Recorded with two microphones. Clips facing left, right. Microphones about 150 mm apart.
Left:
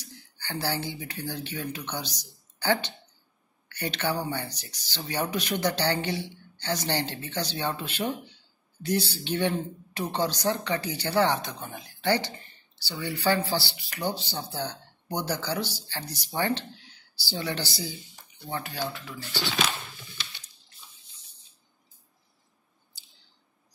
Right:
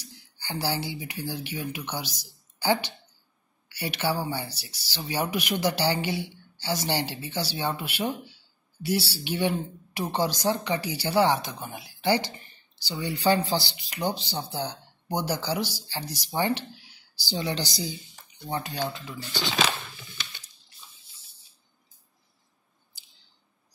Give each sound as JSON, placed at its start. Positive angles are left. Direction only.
{"t": 0.0, "sound": "speech", "side_deg": -10}